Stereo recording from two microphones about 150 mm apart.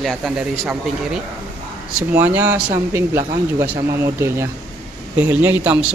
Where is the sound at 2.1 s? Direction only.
15° right (ahead or behind).